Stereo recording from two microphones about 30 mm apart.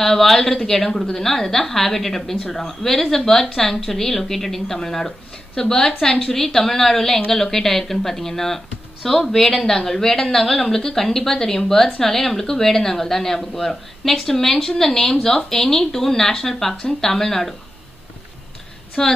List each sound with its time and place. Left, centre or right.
0.0 s a woman's voice: centre
19.0 s a woman's voice: left